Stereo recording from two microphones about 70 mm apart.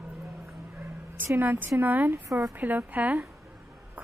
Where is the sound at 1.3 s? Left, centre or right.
Right.